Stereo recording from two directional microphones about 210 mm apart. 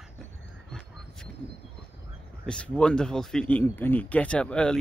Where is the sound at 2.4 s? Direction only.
5° left (ahead or behind).